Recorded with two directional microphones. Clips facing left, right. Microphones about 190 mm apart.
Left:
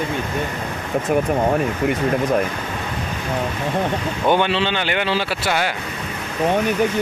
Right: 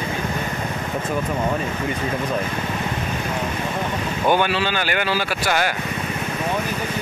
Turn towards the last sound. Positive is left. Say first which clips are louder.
# left 1 dB
turn(degrees=20)  # may be behind; listen again after turning